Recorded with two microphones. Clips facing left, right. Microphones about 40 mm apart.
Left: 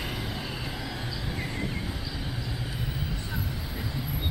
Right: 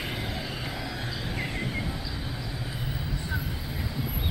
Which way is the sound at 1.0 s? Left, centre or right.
Centre.